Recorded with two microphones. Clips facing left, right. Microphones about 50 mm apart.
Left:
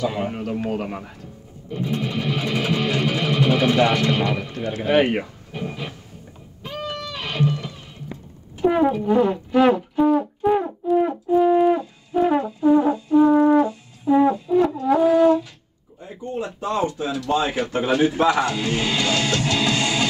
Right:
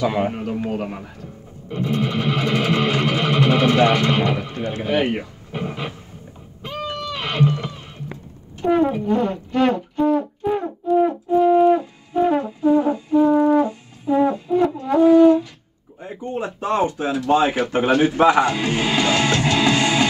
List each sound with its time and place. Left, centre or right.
0.0 s speech: right
0.3 s speech: centre
1.7 s music: right
4.8 s speech: left
6.6 s music: right
8.5 s brass instrument: centre
12.6 s music: centre
13.1 s brass instrument: centre
14.5 s french horn: centre
14.9 s wind instrument: centre
16.0 s speech: right